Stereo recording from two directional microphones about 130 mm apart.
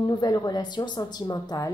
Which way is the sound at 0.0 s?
35° left (ahead or behind).